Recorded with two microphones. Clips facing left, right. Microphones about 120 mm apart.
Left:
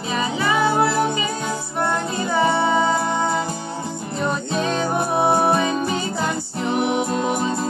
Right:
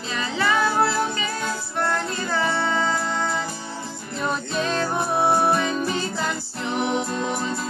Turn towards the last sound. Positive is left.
turn(degrees=55)  # may be behind; listen again after turning